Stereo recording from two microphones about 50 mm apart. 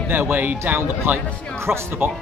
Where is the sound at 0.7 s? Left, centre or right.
Right.